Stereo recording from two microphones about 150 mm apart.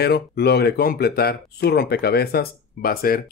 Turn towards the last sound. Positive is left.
turn(degrees=80)